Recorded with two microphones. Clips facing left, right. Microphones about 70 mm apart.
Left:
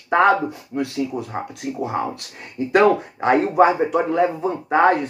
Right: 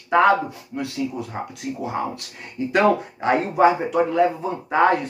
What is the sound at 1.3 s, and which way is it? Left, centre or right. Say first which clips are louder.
Speech: left 2 dB; left.